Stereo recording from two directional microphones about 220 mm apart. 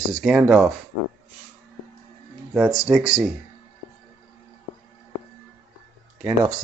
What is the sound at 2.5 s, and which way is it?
Speech, centre (ahead or behind).